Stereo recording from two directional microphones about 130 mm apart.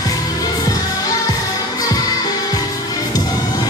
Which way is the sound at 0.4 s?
25° left (ahead or behind).